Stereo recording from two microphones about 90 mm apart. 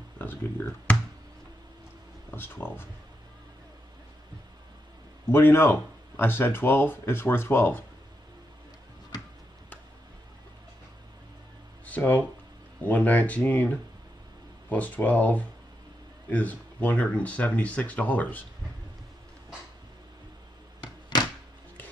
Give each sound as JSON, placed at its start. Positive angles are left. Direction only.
{"t": 0.2, "sound": "speech", "side_deg": 25}
{"t": 2.3, "sound": "speech", "side_deg": 25}
{"t": 5.3, "sound": "speech", "side_deg": 25}
{"t": 11.8, "sound": "speech", "side_deg": 20}
{"t": 20.8, "sound": "thunk", "side_deg": 50}